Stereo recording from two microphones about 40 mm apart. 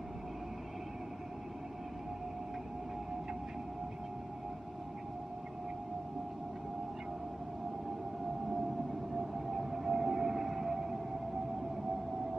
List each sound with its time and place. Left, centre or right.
9.1 s whale vocalization: centre